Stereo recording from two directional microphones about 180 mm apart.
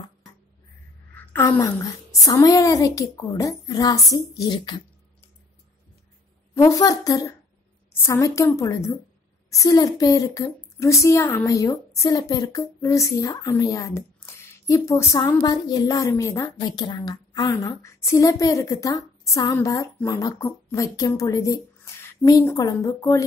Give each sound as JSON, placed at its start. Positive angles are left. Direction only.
{"t": 1.1, "sound": "a woman's voice", "side_deg": 10}
{"t": 6.5, "sound": "a woman's voice", "side_deg": 15}